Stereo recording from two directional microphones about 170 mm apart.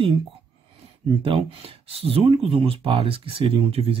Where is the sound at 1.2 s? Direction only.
30° right (ahead or behind).